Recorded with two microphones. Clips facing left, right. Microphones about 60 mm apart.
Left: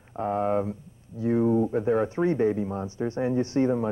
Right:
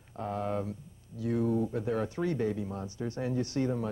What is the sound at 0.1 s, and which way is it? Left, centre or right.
Speech, left.